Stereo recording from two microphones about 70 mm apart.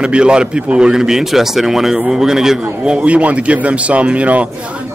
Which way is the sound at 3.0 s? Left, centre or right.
Centre.